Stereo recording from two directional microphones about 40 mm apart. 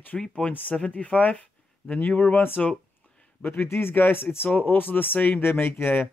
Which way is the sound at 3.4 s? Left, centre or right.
Left.